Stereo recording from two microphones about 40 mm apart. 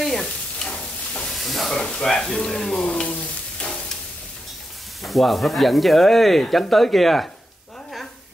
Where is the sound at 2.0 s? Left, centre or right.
Centre.